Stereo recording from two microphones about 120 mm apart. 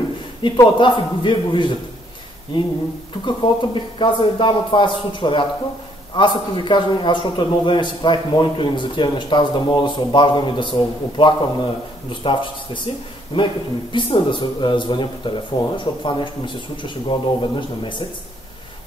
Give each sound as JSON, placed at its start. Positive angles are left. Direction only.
{"t": 0.4, "sound": "a man's voice", "side_deg": 40}
{"t": 3.3, "sound": "a man's voice", "side_deg": 40}